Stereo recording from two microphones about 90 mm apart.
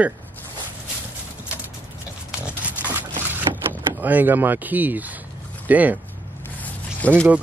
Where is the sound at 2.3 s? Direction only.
10° right (ahead or behind).